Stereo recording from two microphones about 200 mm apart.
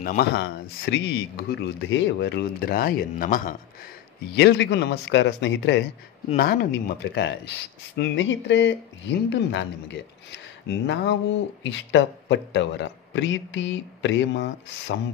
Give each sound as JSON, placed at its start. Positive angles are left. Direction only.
{"t": 0.0, "sound": "speech", "side_deg": 50}
{"t": 4.4, "sound": "speech", "side_deg": 60}
{"t": 6.3, "sound": "speech", "side_deg": 50}